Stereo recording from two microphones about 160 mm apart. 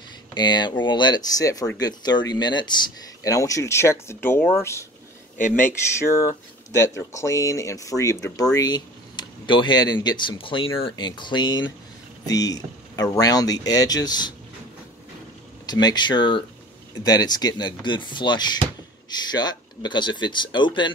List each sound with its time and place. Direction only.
0.3 s speech: 30° left (ahead or behind)
15.6 s speech: 25° left (ahead or behind)